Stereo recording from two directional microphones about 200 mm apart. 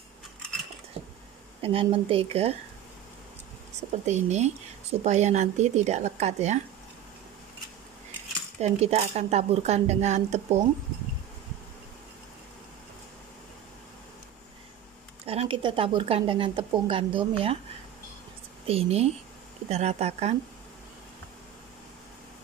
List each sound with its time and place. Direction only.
1.6 s speech: 30° right (ahead or behind)
3.9 s speech: 35° right (ahead or behind)
8.5 s speech: 35° right (ahead or behind)
15.2 s speech: 30° right (ahead or behind)
18.7 s speech: 30° right (ahead or behind)